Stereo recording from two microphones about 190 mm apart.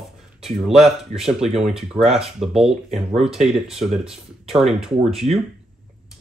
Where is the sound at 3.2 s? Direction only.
5° right (ahead or behind).